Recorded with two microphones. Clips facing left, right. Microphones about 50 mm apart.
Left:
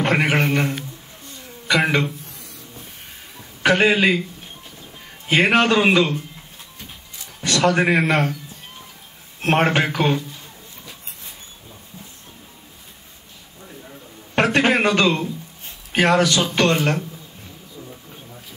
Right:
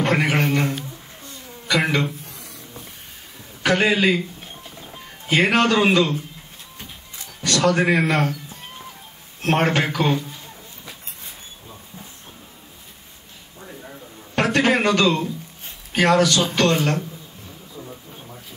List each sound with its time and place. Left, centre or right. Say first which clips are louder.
0.0 s a man's voice: left 1 dB; left
3.6 s a man's voice: left 2 dB; left
5.3 s a man's voice: left 1 dB; left
7.4 s a man's voice: left 1 dB; left
9.4 s a man's voice: left 2 dB; left
14.3 s a sound: left 1 dB; left
15.9 s a man's voice: even; left